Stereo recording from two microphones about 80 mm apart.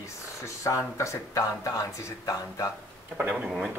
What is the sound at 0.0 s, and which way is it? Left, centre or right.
Speech, left.